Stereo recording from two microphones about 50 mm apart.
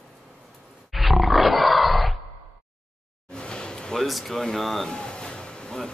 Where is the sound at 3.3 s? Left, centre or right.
Centre.